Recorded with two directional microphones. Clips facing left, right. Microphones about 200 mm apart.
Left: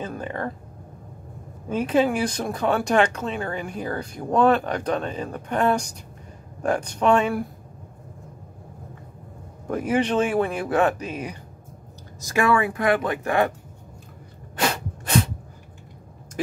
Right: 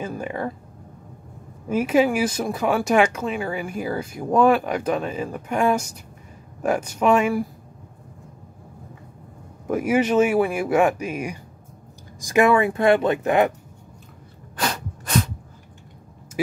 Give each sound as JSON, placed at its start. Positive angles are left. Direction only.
{"t": 0.0, "sound": "a sound", "side_deg": -10}
{"t": 1.7, "sound": "speech", "side_deg": -10}
{"t": 9.7, "sound": "speech", "side_deg": -10}